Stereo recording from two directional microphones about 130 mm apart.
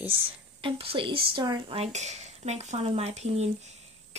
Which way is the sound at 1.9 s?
60° right (ahead or behind).